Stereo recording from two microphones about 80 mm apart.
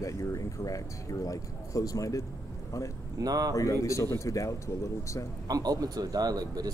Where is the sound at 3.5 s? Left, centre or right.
Left.